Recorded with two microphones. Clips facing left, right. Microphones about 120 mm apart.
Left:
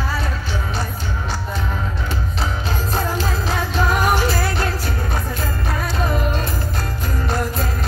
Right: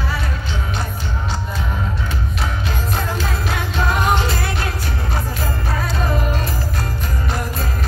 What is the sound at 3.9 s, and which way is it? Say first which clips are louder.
Music: right 1 dB; 20° right (ahead or behind).